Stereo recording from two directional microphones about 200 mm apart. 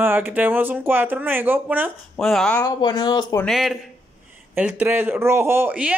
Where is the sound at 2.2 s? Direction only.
5° left (ahead or behind).